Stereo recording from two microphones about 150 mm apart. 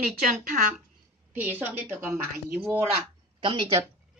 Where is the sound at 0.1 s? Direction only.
65° right (ahead or behind).